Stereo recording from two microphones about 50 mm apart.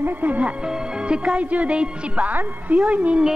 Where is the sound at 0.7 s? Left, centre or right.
Right.